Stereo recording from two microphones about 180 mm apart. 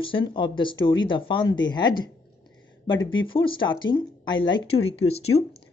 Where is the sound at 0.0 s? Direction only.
30° left (ahead or behind).